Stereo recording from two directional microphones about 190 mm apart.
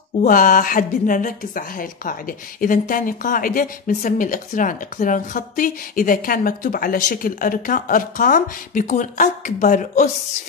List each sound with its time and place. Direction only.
0.2 s a woman's voice: 45° left (ahead or behind)